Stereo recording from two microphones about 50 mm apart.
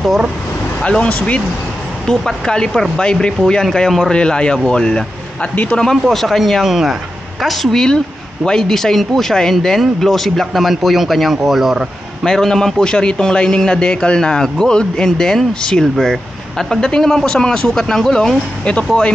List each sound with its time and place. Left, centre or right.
2.0 s a man's voice: centre
7.4 s speech: centre
12.3 s a man's voice: centre
18.6 s speech: left